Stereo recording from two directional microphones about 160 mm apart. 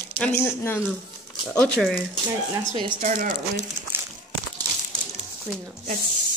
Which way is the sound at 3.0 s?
55° right (ahead or behind).